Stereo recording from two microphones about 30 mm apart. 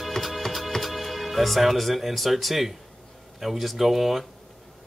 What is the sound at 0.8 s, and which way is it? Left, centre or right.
Speech, centre.